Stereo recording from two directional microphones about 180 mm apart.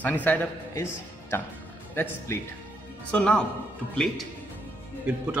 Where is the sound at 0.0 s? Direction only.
10° left (ahead or behind).